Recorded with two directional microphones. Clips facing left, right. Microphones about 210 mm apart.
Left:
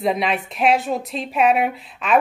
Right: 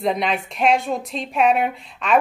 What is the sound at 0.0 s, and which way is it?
Speech, centre (ahead or behind).